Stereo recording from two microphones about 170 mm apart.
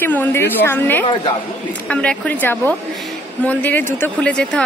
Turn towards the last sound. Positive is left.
turn(degrees=5)  # may be behind; listen again after turning